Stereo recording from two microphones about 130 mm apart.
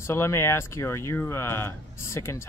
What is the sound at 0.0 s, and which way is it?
Speech, 20° left (ahead or behind).